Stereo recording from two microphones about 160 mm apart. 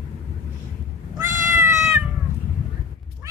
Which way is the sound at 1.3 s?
55° right (ahead or behind).